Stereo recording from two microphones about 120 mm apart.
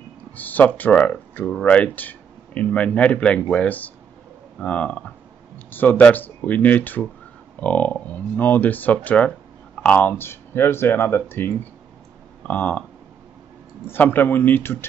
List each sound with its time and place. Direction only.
0.4 s speech: 15° left (ahead or behind)
13.8 s speech: 15° left (ahead or behind)